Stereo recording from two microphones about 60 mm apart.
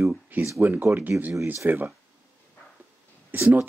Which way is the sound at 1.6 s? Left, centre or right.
Right.